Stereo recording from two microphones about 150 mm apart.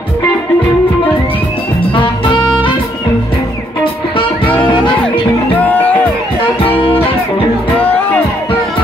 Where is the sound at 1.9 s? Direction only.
35° left (ahead or behind).